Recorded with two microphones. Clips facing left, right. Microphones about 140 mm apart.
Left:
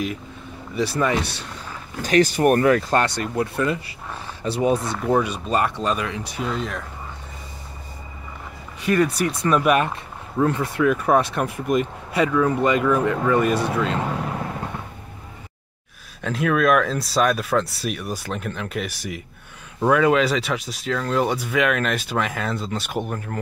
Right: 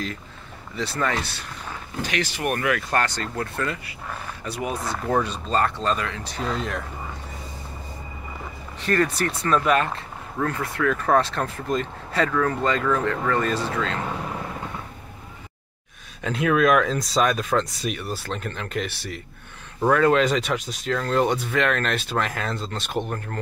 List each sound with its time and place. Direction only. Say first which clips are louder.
0.7 s speech: left 4 dB; 15° left (ahead or behind)
2.0 s speech: left 10 dB; 40° left (ahead or behind)
2.9 s speech: left 4 dB; 20° left (ahead or behind)
5.0 s speech: left 1 dB; 10° left (ahead or behind)
8.8 s speech: left 3 dB; 10° left (ahead or behind)
16.2 s speech: even; centre (ahead or behind)